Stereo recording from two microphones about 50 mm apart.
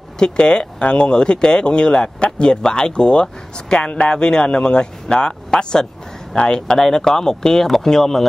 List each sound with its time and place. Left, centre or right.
0.2 s speech: centre